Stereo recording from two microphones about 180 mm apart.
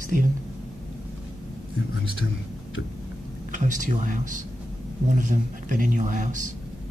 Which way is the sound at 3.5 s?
45° right (ahead or behind).